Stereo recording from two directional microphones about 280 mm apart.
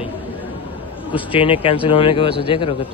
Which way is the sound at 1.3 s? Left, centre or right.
Centre.